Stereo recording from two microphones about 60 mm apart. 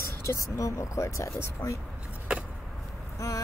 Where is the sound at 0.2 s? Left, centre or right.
Left.